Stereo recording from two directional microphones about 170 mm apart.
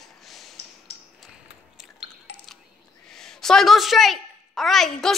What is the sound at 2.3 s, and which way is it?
Coin, 80° left.